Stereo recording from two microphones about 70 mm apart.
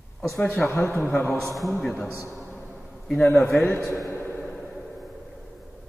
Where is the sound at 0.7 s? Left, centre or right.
Left.